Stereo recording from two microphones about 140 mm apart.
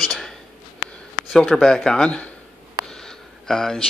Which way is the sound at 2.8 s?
5° left (ahead or behind).